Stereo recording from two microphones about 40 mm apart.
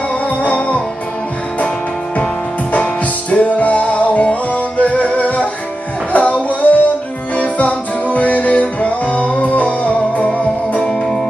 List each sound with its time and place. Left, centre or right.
0.4 s music: left
2.7 s music: left
10.8 s music: centre